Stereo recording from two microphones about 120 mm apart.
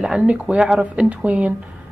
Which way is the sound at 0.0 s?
5° right (ahead or behind).